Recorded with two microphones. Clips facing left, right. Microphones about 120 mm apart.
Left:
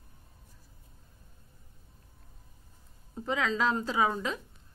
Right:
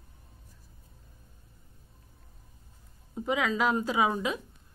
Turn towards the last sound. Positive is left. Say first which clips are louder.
# right 2 dB
turn(degrees=-10)  # may be behind; listen again after turning